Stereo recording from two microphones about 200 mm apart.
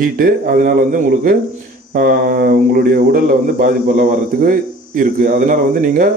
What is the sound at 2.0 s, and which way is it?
A man's voice, 45° right (ahead or behind).